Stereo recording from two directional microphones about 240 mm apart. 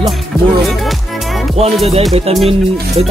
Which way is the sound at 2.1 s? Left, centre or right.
Right.